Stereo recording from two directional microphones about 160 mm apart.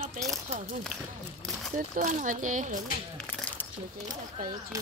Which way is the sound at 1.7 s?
55° right (ahead or behind).